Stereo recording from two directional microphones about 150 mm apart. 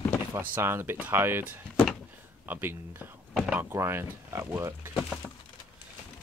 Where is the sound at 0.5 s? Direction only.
15° right (ahead or behind).